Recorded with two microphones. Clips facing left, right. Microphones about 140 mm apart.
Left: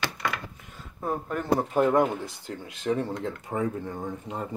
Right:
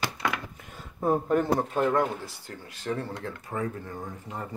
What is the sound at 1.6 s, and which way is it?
Speech, 15° left (ahead or behind).